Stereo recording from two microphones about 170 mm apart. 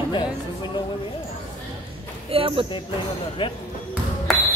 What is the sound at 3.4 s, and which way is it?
Speech, 30° left (ahead or behind).